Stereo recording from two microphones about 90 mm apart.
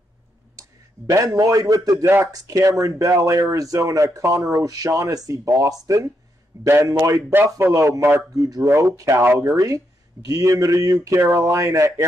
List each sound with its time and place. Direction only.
1.1 s speech: 40° right (ahead or behind)